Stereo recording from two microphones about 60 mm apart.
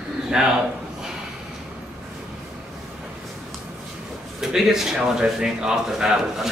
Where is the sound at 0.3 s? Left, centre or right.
Centre.